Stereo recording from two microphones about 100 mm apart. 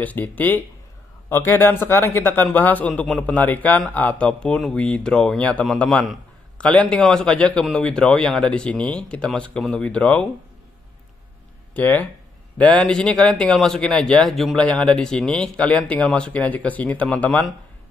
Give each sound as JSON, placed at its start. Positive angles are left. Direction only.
{"t": 0.0, "sound": "a man's voice", "side_deg": 15}
{"t": 11.7, "sound": "speech", "side_deg": 15}